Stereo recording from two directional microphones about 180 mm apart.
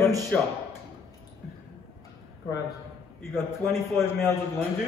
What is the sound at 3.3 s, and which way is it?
Speech, centre (ahead or behind).